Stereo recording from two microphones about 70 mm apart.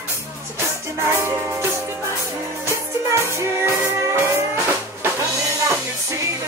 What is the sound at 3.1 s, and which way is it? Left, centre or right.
Music, right.